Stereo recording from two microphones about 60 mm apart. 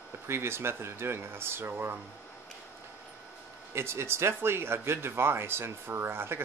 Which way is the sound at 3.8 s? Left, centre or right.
Right.